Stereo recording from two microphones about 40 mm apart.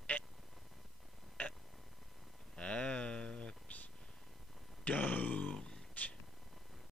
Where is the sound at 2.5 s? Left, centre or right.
Left.